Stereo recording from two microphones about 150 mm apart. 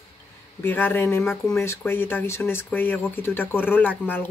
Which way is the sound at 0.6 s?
10° left (ahead or behind).